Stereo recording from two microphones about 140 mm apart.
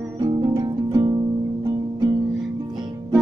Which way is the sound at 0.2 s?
30° right (ahead or behind).